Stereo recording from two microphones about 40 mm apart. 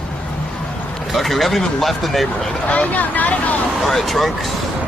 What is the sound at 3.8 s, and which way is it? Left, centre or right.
Speech, centre.